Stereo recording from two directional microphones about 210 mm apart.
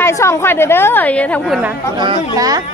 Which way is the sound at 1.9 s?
20° right (ahead or behind).